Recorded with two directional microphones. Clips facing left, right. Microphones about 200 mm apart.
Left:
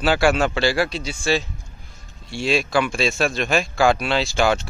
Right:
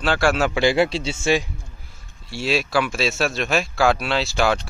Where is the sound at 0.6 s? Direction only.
20° right (ahead or behind).